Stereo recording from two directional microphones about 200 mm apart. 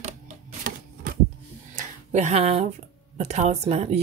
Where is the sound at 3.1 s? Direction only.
35° right (ahead or behind).